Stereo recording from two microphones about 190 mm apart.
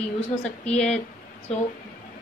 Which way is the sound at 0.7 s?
5° left (ahead or behind).